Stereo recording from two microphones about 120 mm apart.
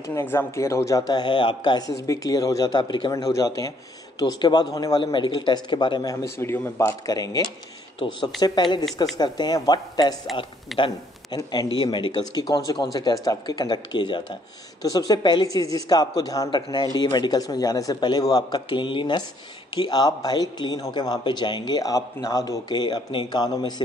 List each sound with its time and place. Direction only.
0.0 s speech: 20° left (ahead or behind); by 6.1 s 40° left (ahead or behind)
6.2 s a man's voice: 20° left (ahead or behind)
7.1 s speech: 35° left (ahead or behind)
10.7 s a man's voice: centre (ahead or behind)
11.3 s speech: 40° left (ahead or behind)
16.4 s speech: 45° left (ahead or behind)